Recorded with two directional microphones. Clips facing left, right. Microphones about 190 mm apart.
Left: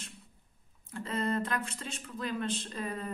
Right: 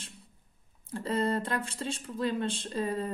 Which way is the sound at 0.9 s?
35° right (ahead or behind).